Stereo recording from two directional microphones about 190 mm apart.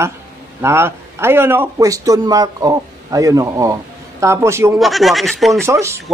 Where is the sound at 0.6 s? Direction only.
10° right (ahead or behind).